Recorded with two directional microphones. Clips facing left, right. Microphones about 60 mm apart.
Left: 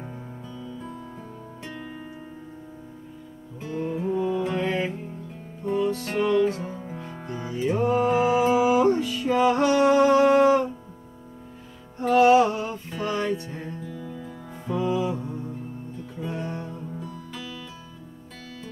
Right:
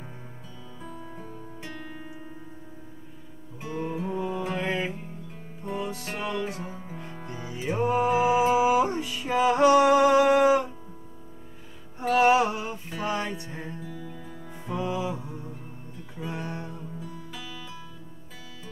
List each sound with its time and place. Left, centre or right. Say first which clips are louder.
0.6 s music: left 4 dB; centre
3.6 s music: left 3 dB; centre
12.2 s music: left 4 dB; centre